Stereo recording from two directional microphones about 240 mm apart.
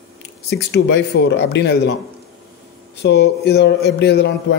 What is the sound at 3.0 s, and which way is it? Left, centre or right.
Speech, left.